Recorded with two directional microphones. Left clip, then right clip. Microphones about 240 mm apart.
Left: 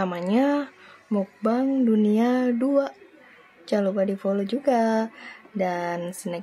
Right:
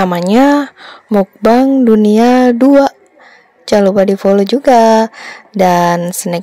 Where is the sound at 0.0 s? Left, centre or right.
Right.